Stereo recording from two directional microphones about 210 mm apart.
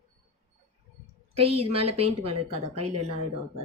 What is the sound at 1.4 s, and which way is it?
A woman's voice, 25° right (ahead or behind).